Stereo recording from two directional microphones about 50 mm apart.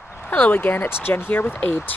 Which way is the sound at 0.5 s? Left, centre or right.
Left.